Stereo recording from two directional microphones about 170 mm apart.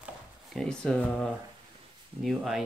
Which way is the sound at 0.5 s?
5° left (ahead or behind).